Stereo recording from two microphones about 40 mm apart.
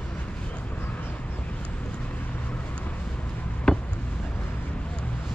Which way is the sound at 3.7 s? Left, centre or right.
Centre.